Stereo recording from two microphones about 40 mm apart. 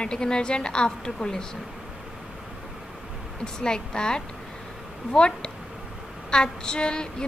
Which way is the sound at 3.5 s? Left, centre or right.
Centre.